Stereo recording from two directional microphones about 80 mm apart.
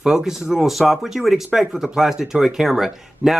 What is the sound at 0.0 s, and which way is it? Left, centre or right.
Speech, centre.